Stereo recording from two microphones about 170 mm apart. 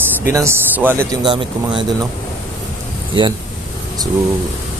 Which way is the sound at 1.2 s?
30° right (ahead or behind).